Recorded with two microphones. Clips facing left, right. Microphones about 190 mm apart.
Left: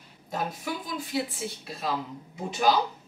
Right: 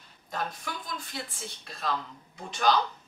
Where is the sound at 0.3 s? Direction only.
5° left (ahead or behind).